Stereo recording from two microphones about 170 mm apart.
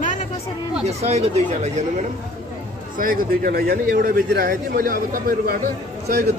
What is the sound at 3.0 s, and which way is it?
A man's voice, 55° right (ahead or behind).